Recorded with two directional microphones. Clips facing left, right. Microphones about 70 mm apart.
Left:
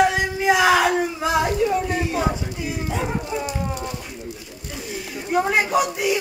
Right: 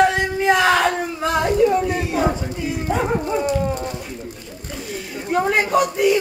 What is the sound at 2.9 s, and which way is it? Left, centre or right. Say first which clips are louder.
Dog: right 7 dB; right.